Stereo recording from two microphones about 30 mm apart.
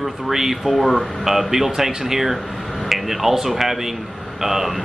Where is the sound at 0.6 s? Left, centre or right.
Centre.